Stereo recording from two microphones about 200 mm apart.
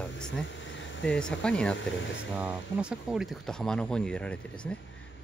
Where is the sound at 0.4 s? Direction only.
65° left (ahead or behind).